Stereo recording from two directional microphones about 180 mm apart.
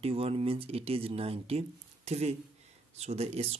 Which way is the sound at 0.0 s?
30° right (ahead or behind).